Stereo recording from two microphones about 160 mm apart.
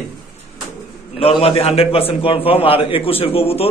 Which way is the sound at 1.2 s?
35° left (ahead or behind).